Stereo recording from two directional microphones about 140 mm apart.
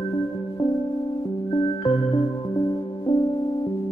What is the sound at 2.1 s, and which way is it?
Music, 30° left (ahead or behind).